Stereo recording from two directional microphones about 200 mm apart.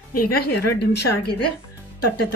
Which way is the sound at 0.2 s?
55° left (ahead or behind).